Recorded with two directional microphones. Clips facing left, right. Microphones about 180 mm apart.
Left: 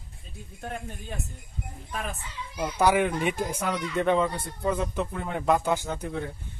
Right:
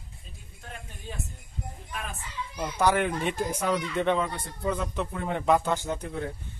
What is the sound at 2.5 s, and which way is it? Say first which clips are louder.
Speech: left 2 dB; 10° left (ahead or behind).